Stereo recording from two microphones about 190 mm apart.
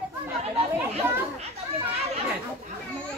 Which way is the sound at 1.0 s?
15° right (ahead or behind).